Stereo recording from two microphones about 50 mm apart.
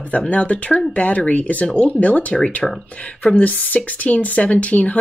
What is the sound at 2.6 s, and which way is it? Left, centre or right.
Speech, centre.